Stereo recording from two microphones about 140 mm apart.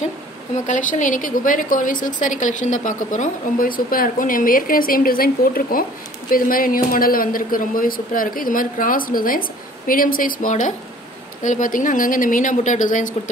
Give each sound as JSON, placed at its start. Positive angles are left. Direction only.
{"t": 0.7, "sound": "a woman's voice", "side_deg": 65}